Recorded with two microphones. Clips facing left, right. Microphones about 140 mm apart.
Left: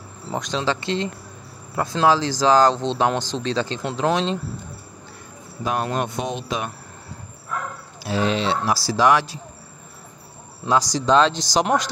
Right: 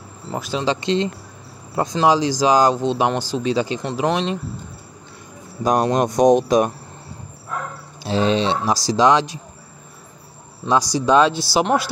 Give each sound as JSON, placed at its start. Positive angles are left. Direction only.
{"t": 0.3, "sound": "speech", "side_deg": -5}
{"t": 5.6, "sound": "speech", "side_deg": -40}
{"t": 8.0, "sound": "speech", "side_deg": -25}
{"t": 10.7, "sound": "speech", "side_deg": -10}